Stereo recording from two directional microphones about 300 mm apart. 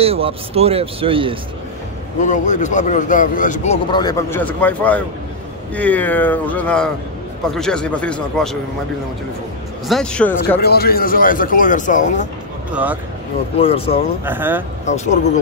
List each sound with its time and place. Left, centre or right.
0.0 s speech: centre
2.2 s speech: left
3.9 s speech: centre
9.8 s speech: centre
10.6 s speech: left
12.7 s speech: centre
13.6 s speech: centre
14.2 s speech: centre